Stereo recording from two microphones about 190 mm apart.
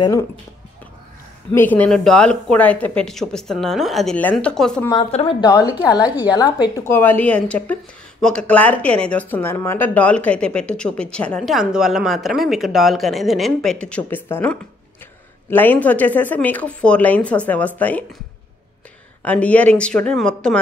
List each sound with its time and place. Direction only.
1.5 s a woman's voice: 10° left (ahead or behind)
5.1 s a woman's voice: 25° left (ahead or behind); by 18.0 s 10° left (ahead or behind)
19.2 s speech: 5° left (ahead or behind)